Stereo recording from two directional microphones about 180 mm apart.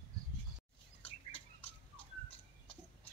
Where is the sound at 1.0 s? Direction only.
30° left (ahead or behind).